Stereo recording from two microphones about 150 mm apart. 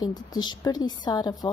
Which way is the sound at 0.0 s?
25° left (ahead or behind).